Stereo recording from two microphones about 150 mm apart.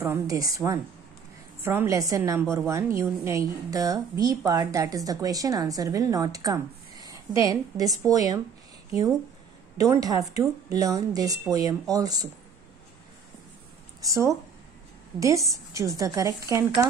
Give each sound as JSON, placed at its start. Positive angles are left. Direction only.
{"t": 0.0, "sound": "a woman's voice", "side_deg": -20}
{"t": 9.8, "sound": "a woman's voice", "side_deg": -25}
{"t": 14.0, "sound": "a woman's voice", "side_deg": -20}